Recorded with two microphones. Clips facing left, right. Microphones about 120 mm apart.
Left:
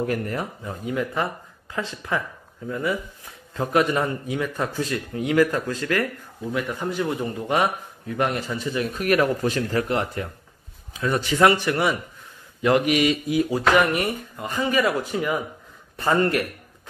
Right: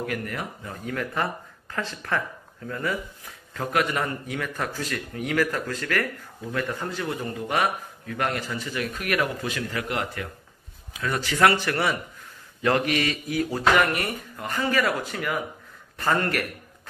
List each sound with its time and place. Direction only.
0.0 s a man's voice: 30° left (ahead or behind)
0.8 s speech: 15° left (ahead or behind)
3.5 s a man's voice: 25° left (ahead or behind)